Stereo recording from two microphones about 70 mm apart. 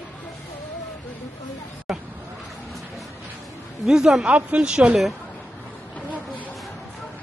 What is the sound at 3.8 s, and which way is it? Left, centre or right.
Speech, centre.